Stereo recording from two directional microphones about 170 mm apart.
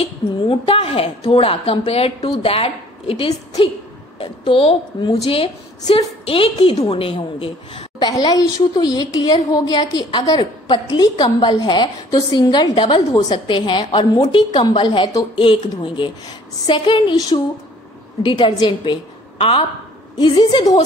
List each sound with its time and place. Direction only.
0.0 s a woman's voice: 30° left (ahead or behind)